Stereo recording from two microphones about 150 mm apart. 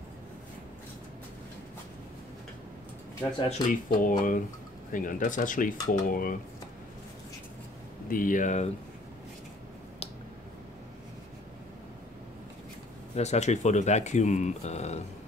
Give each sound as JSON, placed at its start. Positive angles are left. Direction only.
{"t": 3.4, "sound": "speech", "side_deg": 60}
{"t": 8.1, "sound": "speech", "side_deg": 65}
{"t": 13.1, "sound": "speech", "side_deg": 50}